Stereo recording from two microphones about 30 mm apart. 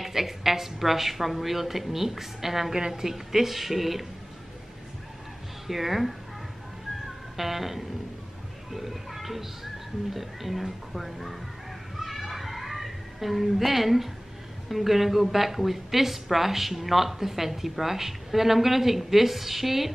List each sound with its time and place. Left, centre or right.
0.0 s a woman's voice: centre
5.7 s speech: centre
7.3 s speech: centre
12.0 s children playing: centre
13.7 s a woman's voice: centre